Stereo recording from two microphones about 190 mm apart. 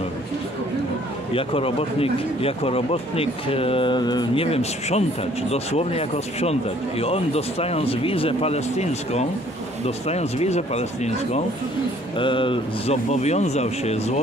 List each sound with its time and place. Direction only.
1.3 s speech: 30° left (ahead or behind)